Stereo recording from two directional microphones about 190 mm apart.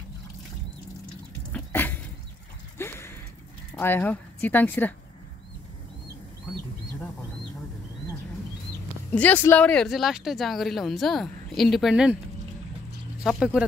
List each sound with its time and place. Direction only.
1.5 s a sound: 10° left (ahead or behind)
3.7 s a woman's voice: 10° left (ahead or behind)
9.1 s speech: 10° left (ahead or behind)
13.2 s speech: centre (ahead or behind)